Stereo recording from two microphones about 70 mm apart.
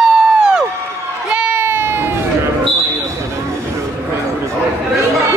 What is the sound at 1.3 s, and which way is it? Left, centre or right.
Crowd, centre.